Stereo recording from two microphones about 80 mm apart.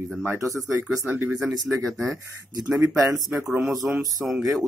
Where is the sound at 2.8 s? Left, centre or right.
Right.